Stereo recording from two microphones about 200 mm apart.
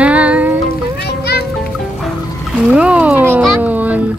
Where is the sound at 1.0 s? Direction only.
55° left (ahead or behind).